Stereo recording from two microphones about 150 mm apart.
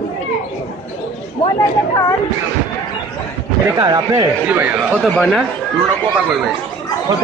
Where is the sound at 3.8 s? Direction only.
25° right (ahead or behind).